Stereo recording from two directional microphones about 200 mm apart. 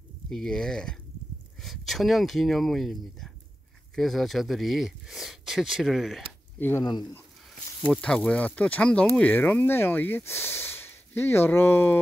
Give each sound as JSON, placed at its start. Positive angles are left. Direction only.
{"t": 0.3, "sound": "speech", "side_deg": 0}
{"t": 6.6, "sound": "speech", "side_deg": 15}
{"t": 7.8, "sound": "speech", "side_deg": 5}